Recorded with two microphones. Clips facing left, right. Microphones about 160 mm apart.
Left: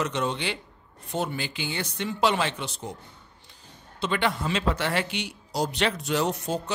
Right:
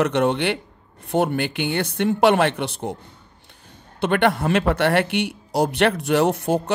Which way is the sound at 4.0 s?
60° right (ahead or behind).